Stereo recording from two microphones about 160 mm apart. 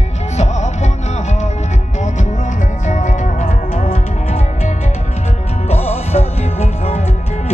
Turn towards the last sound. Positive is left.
turn(degrees=40)  # may be behind; listen again after turning